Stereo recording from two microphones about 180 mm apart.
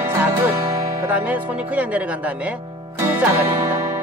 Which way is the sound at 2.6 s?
25° right (ahead or behind).